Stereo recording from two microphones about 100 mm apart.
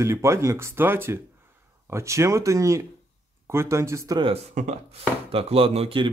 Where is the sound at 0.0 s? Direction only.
30° right (ahead or behind).